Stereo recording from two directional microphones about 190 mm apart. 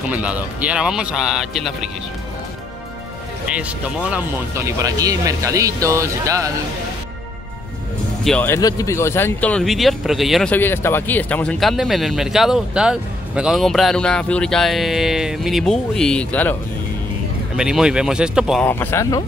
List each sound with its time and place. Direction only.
0.1 s speech: 5° right (ahead or behind)
3.4 s speech: 5° right (ahead or behind)
8.2 s speech: 5° left (ahead or behind)
8.5 s speech: 20° left (ahead or behind); by 10.5 s centre (ahead or behind)
10.5 s speech: 10° left (ahead or behind)
17.6 s speech: 5° right (ahead or behind)
18.7 s speech: 10° left (ahead or behind)